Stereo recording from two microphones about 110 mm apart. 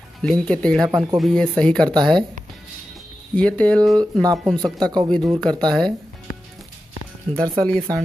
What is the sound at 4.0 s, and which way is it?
Speech, 35° right (ahead or behind).